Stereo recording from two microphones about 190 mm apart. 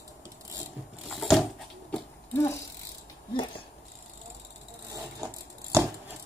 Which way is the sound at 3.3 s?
25° left (ahead or behind).